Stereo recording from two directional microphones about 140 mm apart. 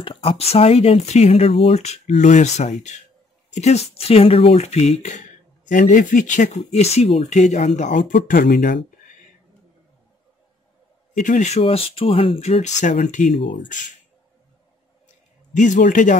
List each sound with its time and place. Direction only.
0.0 s speech: 40° left (ahead or behind)
5.7 s speech: 70° left (ahead or behind)
11.1 s speech: 65° left (ahead or behind)
15.5 s speech: 60° left (ahead or behind)